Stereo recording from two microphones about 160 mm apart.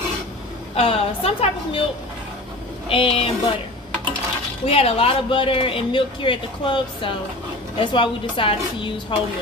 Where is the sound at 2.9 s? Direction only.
35° left (ahead or behind).